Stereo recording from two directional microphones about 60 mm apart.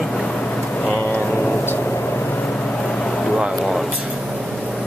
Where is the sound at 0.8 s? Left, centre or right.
Left.